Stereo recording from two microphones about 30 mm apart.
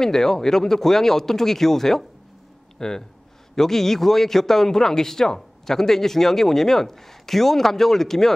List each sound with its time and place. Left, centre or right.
0.0 s a man's voice: centre
2.8 s speech: left
3.5 s a man's voice: centre